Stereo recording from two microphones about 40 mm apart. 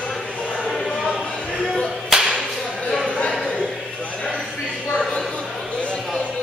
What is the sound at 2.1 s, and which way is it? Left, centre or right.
Music, centre.